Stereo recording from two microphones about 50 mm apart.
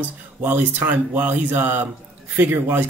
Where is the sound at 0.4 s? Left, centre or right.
Right.